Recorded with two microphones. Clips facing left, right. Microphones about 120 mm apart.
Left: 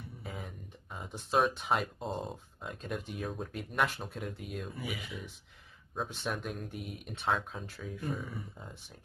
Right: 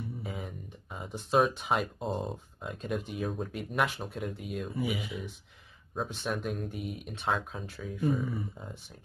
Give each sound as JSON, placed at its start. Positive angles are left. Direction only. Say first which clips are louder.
{"t": 0.2, "sound": "speech", "louder": "right 4 dB", "side_deg": 0}
{"t": 4.7, "sound": "speech", "louder": "right 8 dB", "side_deg": -20}
{"t": 5.0, "sound": "speech", "louder": "right 5 dB", "side_deg": -5}